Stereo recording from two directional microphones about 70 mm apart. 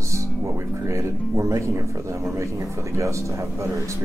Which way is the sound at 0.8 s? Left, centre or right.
Right.